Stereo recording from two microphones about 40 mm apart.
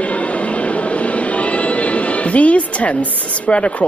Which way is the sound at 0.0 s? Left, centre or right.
Left.